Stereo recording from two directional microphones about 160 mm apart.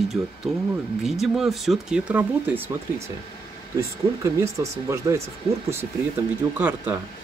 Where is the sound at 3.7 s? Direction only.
20° right (ahead or behind).